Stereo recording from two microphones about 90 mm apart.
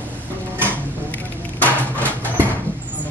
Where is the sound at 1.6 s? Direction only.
20° left (ahead or behind).